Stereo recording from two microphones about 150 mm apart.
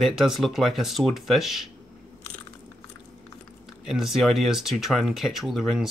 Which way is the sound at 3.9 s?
Centre (ahead or behind).